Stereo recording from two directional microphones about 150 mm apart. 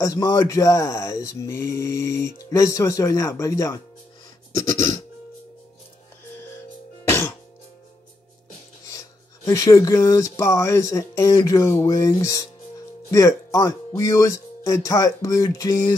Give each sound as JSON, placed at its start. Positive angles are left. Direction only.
{"t": 0.0, "sound": "speech", "side_deg": 20}
{"t": 7.1, "sound": "music", "side_deg": 15}
{"t": 8.8, "sound": "speech", "side_deg": 20}